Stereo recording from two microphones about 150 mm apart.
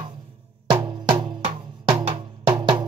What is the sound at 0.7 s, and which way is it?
Music, 30° right (ahead or behind).